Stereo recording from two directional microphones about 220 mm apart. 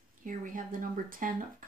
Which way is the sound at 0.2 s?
35° right (ahead or behind).